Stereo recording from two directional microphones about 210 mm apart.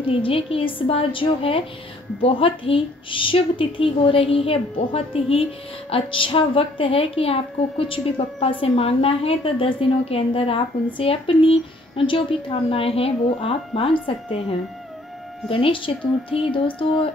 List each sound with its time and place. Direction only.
0.1 s a woman's voice: 25° left (ahead or behind)
15.4 s a woman's voice: 25° left (ahead or behind)